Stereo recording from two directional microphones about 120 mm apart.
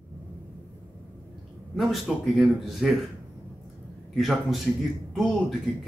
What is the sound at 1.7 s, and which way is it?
Speech, centre (ahead or behind).